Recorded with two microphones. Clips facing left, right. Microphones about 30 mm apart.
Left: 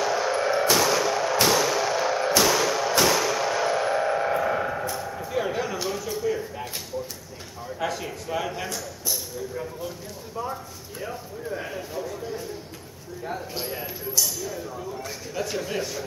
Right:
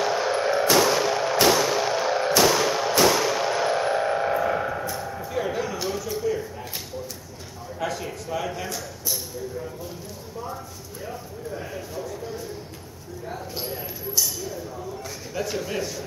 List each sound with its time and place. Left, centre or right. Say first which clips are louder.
0.0 s music: right 1 dB; centre
0.5 s music: right 1 dB; centre
1.0 s music: right 2 dB; centre
2.0 s a sound: right 2 dB; centre
2.9 s music: right 3 dB; centre
3.3 s music: right 1 dB; centre
3.7 s music: even; centre
7.8 s a sound: even; centre
10.4 s a sound: left 3 dB; left
15.3 s speech: right 1 dB; centre